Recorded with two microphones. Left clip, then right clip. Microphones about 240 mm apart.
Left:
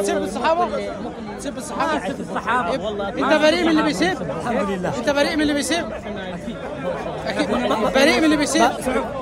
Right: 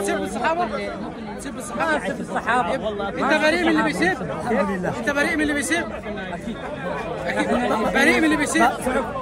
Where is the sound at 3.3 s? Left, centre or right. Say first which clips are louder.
Left 2 dB; left.